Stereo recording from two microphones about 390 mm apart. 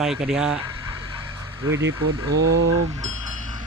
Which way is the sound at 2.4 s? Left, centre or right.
Right.